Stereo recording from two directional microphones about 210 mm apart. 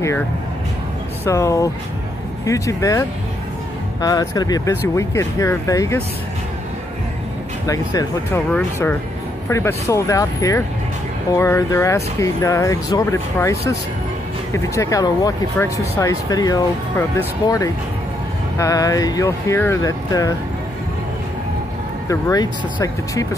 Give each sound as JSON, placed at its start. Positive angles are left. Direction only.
{"t": 1.2, "sound": "speech", "side_deg": 15}
{"t": 7.6, "sound": "speech", "side_deg": 15}
{"t": 18.6, "sound": "speech", "side_deg": 15}
{"t": 22.0, "sound": "speech", "side_deg": 15}